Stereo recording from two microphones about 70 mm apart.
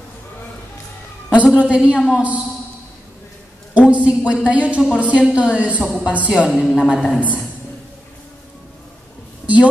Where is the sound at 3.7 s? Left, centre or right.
Centre.